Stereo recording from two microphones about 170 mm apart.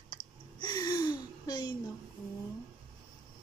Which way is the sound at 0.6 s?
25° left (ahead or behind).